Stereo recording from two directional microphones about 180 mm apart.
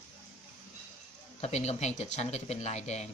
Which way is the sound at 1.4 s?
40° left (ahead or behind).